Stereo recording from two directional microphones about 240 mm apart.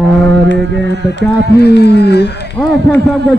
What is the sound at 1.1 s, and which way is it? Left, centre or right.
Speech, left.